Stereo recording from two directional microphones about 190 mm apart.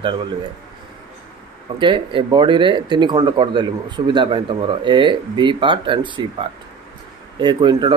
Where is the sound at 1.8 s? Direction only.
25° right (ahead or behind).